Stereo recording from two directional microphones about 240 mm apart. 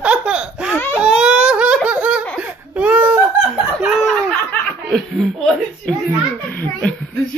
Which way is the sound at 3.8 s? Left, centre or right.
Centre.